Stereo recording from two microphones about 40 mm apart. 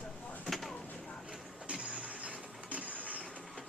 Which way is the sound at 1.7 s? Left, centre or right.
Right.